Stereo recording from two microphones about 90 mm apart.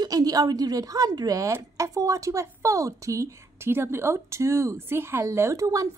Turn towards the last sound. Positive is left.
turn(degrees=-35)  # may be behind; listen again after turning